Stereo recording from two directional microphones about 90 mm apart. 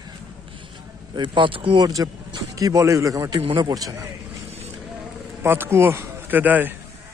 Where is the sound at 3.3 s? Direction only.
90° right.